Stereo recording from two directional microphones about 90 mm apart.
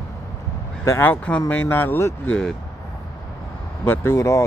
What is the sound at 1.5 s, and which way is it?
Speech, 20° left (ahead or behind).